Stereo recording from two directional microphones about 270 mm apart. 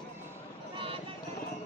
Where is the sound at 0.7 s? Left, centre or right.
Centre.